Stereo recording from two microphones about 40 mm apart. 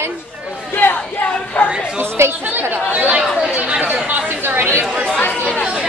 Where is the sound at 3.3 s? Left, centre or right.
Right.